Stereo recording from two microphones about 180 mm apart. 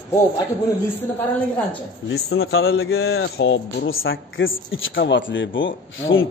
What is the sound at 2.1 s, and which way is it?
Speech, 60° left (ahead or behind).